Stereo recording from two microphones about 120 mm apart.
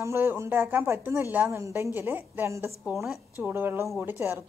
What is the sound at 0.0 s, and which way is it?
A woman's voice, 20° right (ahead or behind).